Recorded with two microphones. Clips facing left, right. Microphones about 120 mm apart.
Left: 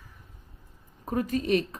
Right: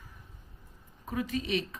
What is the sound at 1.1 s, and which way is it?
Speech, 45° left (ahead or behind).